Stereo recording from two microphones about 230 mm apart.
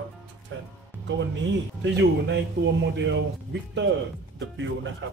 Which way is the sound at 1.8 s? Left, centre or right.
Right.